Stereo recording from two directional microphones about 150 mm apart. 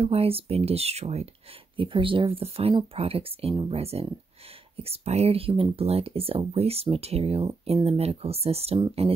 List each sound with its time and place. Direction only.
0.0 s speech: 40° right (ahead or behind)